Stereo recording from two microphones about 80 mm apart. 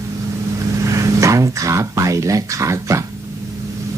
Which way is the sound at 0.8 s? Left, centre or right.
Right.